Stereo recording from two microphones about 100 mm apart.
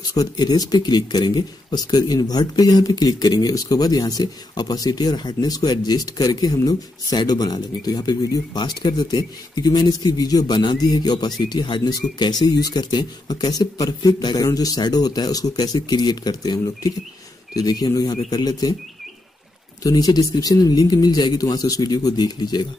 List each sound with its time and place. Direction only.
0.1 s speech: 40° left (ahead or behind)
19.8 s speech: 40° left (ahead or behind)